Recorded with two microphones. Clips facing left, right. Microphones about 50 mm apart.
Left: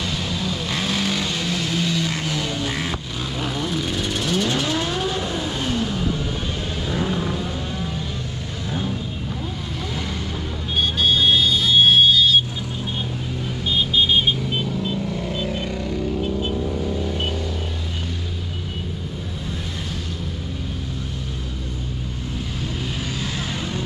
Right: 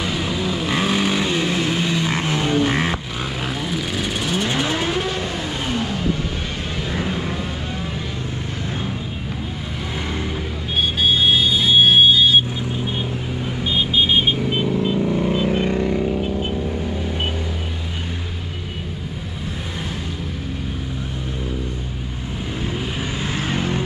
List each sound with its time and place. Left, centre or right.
0.0 s vehicle: centre
3.4 s vehicle: centre
11.1 s vehicle: centre
13.7 s vehicle: centre
23.3 s vehicle: right